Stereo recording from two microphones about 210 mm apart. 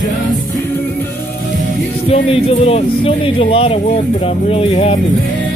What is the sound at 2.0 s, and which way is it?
Speech, 25° left (ahead or behind).